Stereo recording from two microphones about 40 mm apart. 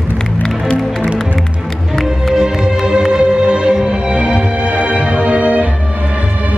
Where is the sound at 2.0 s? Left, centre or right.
Centre.